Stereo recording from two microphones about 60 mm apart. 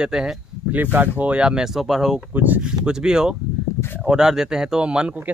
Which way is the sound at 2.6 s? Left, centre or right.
Centre.